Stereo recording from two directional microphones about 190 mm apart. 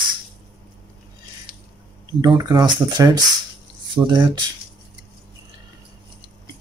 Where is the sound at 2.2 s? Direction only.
20° right (ahead or behind).